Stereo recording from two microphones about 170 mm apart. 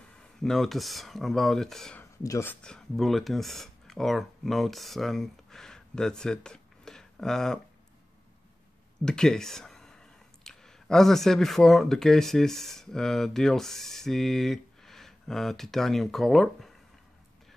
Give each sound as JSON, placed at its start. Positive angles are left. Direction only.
{"t": 0.2, "sound": "speech", "side_deg": 5}
{"t": 2.2, "sound": "speech", "side_deg": 15}
{"t": 2.6, "sound": "speech", "side_deg": 5}
{"t": 9.0, "sound": "speech", "side_deg": 5}